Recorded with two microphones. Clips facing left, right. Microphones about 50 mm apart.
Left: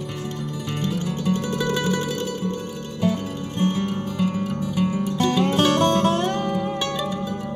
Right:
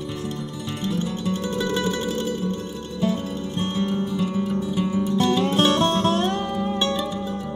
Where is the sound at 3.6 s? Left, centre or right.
Left.